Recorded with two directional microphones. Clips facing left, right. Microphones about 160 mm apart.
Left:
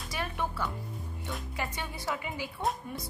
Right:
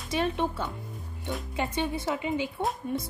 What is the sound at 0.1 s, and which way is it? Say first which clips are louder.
A woman's voice: right 7 dB; 25° right (ahead or behind).